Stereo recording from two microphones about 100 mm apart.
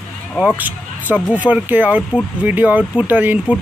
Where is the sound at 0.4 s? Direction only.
15° right (ahead or behind).